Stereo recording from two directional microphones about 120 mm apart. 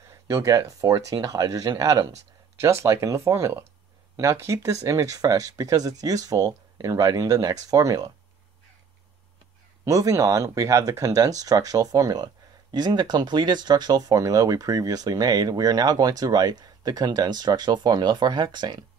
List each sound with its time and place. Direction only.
0.0 s speech: 25° right (ahead or behind)
9.8 s speech: 30° right (ahead or behind)